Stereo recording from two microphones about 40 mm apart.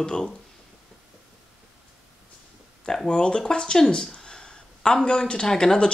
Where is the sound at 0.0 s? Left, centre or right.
Centre.